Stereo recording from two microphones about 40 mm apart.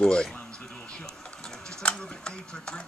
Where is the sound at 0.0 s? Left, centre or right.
Left.